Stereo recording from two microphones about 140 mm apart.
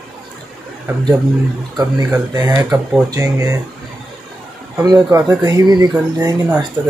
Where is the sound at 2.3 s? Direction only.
25° right (ahead or behind).